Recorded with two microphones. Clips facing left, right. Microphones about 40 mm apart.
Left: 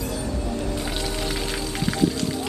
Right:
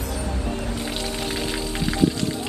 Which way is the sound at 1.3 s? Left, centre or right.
Right.